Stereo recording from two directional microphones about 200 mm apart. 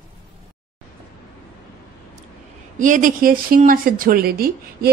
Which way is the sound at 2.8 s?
40° right (ahead or behind).